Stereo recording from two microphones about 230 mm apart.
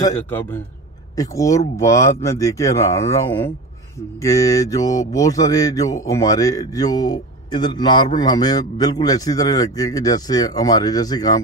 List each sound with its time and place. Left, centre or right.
0.0 s speech: centre